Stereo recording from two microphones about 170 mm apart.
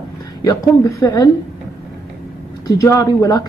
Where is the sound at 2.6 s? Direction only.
20° left (ahead or behind).